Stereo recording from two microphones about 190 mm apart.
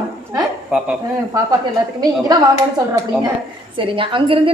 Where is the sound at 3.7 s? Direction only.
25° right (ahead or behind).